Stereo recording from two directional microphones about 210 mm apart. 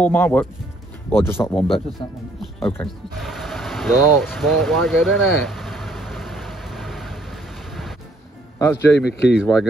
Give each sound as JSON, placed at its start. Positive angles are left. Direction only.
{"t": 0.0, "sound": "speech", "side_deg": 10}
{"t": 2.0, "sound": "speech", "side_deg": 25}
{"t": 2.4, "sound": "a sound", "side_deg": 0}
{"t": 4.4, "sound": "speech", "side_deg": 0}
{"t": 5.0, "sound": "vehicle", "side_deg": 0}
{"t": 8.5, "sound": "speech", "side_deg": 15}
{"t": 8.9, "sound": "speech", "side_deg": 50}
{"t": 9.4, "sound": "speech", "side_deg": 0}